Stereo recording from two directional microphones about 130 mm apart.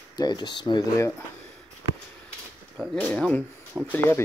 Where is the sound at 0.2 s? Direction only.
35° left (ahead or behind).